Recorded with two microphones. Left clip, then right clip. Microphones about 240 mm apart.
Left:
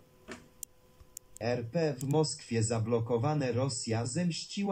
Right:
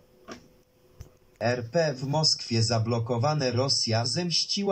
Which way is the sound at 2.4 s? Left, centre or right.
Right.